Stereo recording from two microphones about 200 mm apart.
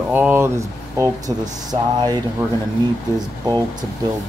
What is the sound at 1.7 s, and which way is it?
Speech, 30° right (ahead or behind).